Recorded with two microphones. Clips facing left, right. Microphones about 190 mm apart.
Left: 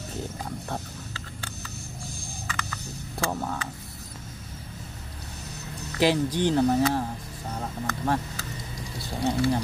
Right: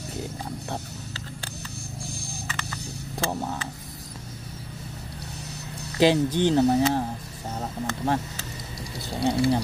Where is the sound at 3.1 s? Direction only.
15° right (ahead or behind).